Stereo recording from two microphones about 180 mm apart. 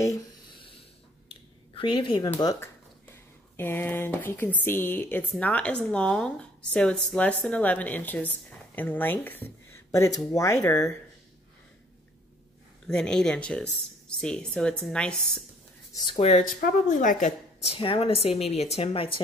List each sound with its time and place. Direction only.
0.0 s a sound: 20° left (ahead or behind)
1.8 s speech: 30° left (ahead or behind)
3.5 s speech: 10° left (ahead or behind)
12.8 s speech: 5° left (ahead or behind)
15.9 s speech: 25° left (ahead or behind)
16.2 s speech: 35° left (ahead or behind)
16.4 s a woman's voice: 50° left (ahead or behind)
17.7 s speech: 30° left (ahead or behind)